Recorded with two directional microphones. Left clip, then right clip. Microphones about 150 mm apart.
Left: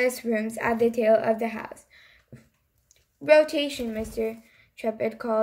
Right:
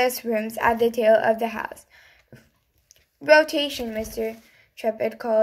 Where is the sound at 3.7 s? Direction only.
20° left (ahead or behind).